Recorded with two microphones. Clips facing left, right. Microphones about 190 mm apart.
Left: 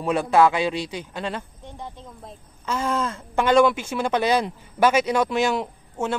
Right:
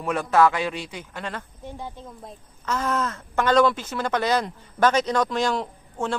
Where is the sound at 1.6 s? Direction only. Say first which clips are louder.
Right 2 dB; 5° right (ahead or behind).